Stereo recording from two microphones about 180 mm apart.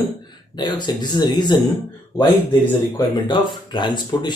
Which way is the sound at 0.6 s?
25° left (ahead or behind).